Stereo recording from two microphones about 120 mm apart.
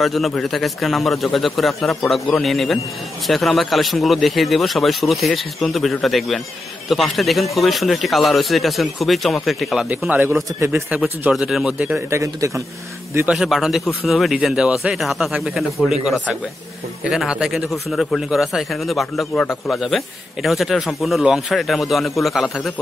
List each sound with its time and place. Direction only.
0.0 s speech: centre (ahead or behind)
9.8 s speech: 15° right (ahead or behind)
12.1 s speech: 25° right (ahead or behind)
13.3 s speech: 5° right (ahead or behind)